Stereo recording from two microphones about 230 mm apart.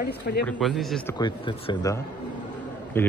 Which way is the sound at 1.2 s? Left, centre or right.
Left.